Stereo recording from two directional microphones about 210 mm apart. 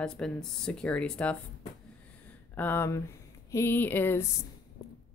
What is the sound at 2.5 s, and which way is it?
Speech, 10° left (ahead or behind).